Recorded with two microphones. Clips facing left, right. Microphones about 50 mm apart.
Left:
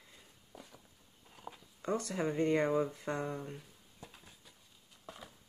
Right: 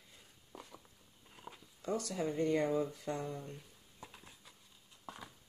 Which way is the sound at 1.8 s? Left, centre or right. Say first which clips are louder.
Left 2 dB; left.